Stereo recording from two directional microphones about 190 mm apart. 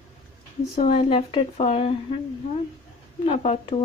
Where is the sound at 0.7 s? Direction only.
30° left (ahead or behind).